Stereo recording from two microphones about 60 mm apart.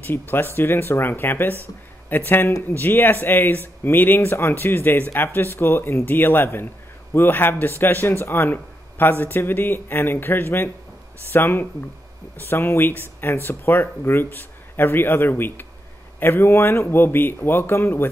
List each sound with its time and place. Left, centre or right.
0.3 s speech: left